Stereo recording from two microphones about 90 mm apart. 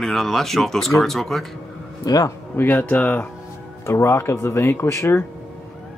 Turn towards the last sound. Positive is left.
turn(degrees=30)  # may be behind; listen again after turning